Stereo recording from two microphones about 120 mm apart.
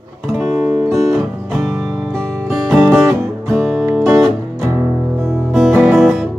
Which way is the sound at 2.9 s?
20° right (ahead or behind).